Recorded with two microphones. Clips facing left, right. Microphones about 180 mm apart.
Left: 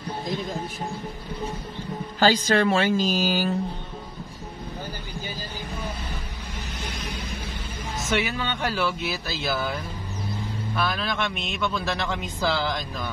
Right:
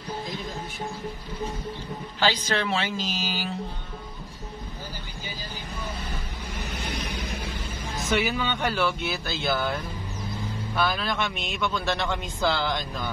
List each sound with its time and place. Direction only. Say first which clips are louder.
2.1 s a woman's voice: left 6 dB; 45° left (ahead or behind)
8.1 s a man's voice: right 1 dB; centre (ahead or behind)
10.8 s a man's voice: right 1 dB; centre (ahead or behind)